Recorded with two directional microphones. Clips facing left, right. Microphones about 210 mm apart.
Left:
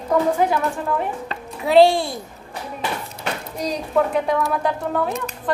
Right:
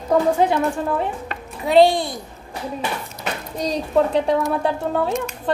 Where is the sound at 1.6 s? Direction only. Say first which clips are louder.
Left 1 dB; centre (ahead or behind).